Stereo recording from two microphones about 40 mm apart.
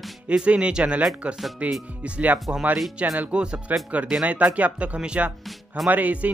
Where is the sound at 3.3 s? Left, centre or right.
Right.